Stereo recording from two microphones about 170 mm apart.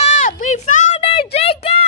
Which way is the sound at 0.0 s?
45° left (ahead or behind).